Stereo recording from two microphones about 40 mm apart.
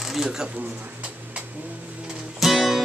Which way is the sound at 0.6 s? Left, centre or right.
Right.